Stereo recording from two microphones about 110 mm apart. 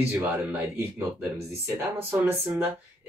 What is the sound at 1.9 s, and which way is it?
Speech, 20° right (ahead or behind).